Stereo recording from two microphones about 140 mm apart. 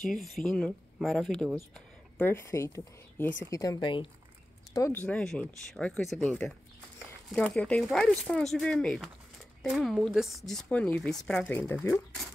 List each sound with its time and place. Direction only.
0.0 s speech: centre (ahead or behind)
2.1 s a woman's voice: 15° left (ahead or behind); by 4.1 s 35° left (ahead or behind)
4.7 s a woman's voice: 20° left (ahead or behind)
5.0 s speech: 5° left (ahead or behind)